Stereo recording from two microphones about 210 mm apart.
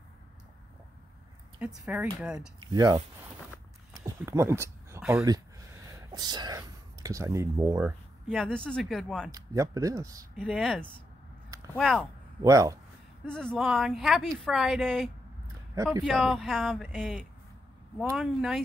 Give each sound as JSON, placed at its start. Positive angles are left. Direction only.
{"t": 1.6, "sound": "a woman's voice", "side_deg": -5}
{"t": 2.7, "sound": "speech", "side_deg": -20}
{"t": 4.0, "sound": "a sound", "side_deg": -15}
{"t": 5.9, "sound": "gasp", "side_deg": -15}
{"t": 8.3, "sound": "a woman's voice", "side_deg": 0}
{"t": 9.3, "sound": "speech", "side_deg": -15}
{"t": 10.3, "sound": "a woman's voice", "side_deg": 5}
{"t": 12.4, "sound": "speech", "side_deg": -15}
{"t": 13.2, "sound": "a woman's voice", "side_deg": 5}
{"t": 15.7, "sound": "speech", "side_deg": -15}
{"t": 16.0, "sound": "a woman's voice", "side_deg": 0}